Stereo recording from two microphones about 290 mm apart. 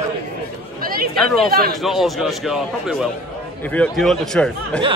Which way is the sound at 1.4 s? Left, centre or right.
Right.